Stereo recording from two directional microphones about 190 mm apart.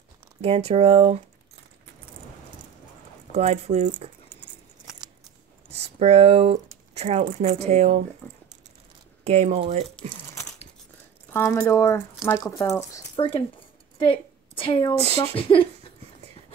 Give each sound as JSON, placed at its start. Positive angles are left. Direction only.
{"t": 0.4, "sound": "speech", "side_deg": -30}
{"t": 3.3, "sound": "speech", "side_deg": -35}
{"t": 5.9, "sound": "speech", "side_deg": -30}
{"t": 8.2, "sound": "speech", "side_deg": 10}
{"t": 9.2, "sound": "speech", "side_deg": -35}
{"t": 11.2, "sound": "speech", "side_deg": 10}
{"t": 13.9, "sound": "a woman's voice", "side_deg": 30}
{"t": 15.0, "sound": "speech", "side_deg": -30}
{"t": 15.3, "sound": "speech", "side_deg": 30}